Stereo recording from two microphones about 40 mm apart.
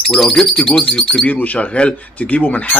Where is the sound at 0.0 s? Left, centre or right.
Centre.